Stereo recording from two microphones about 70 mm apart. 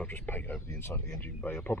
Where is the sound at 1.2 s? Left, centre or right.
Left.